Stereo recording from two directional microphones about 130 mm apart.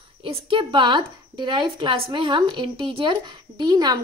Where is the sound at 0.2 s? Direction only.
40° right (ahead or behind).